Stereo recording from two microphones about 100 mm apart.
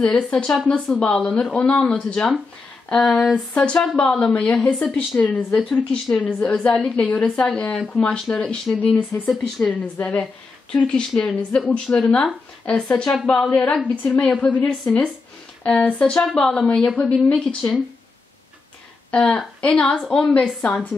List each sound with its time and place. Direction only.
0.3 s a woman's voice: 10° left (ahead or behind)
19.0 s a woman's voice: 10° left (ahead or behind)
20.6 s a woman's voice: 15° left (ahead or behind)